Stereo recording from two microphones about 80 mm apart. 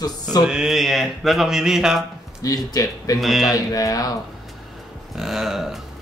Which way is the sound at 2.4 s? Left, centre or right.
Left.